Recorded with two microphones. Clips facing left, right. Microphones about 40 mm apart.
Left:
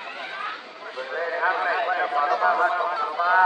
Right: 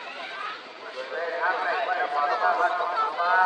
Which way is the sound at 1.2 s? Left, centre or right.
Left.